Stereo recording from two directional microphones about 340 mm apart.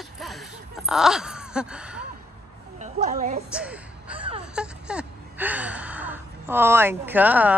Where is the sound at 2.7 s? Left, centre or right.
Right.